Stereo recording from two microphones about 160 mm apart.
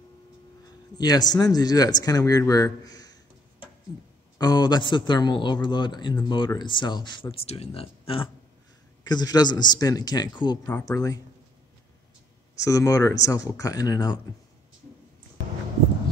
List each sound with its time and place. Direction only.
0.9 s a man's voice: 25° left (ahead or behind)
4.4 s a man's voice: 25° left (ahead or behind)
9.0 s a man's voice: 25° left (ahead or behind)
12.6 s a man's voice: 20° left (ahead or behind)